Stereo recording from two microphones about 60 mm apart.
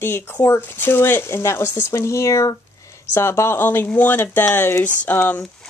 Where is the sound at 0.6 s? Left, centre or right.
Left.